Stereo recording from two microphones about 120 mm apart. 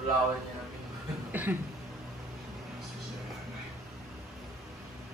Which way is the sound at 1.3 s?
15° right (ahead or behind).